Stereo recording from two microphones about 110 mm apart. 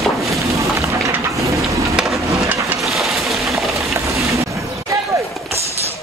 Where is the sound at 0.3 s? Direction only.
30° right (ahead or behind).